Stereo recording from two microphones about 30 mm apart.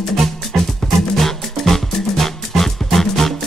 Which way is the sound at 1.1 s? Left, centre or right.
Centre.